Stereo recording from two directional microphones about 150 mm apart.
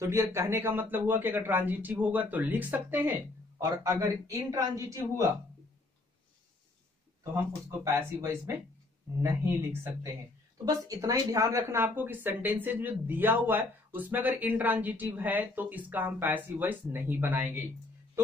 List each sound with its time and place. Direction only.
0.0 s a man's voice: 20° right (ahead or behind)
7.8 s a man's voice: 20° right (ahead or behind)